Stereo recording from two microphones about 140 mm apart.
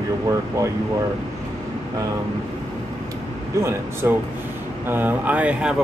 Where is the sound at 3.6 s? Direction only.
20° right (ahead or behind).